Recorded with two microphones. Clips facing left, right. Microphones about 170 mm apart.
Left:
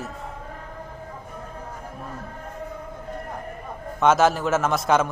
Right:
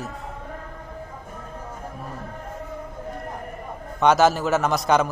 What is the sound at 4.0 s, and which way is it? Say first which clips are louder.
A man's voice: right 1 dB; centre (ahead or behind).